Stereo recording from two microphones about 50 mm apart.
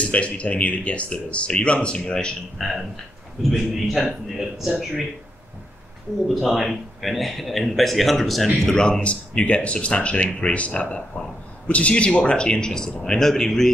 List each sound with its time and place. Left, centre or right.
0.0 s speech: left
2.6 s a man's voice: centre
6.2 s a man's voice: centre